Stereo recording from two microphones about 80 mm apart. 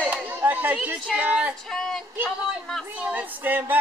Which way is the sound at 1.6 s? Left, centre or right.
Centre.